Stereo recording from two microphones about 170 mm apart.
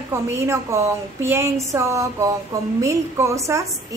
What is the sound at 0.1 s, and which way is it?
A woman's voice, 15° right (ahead or behind).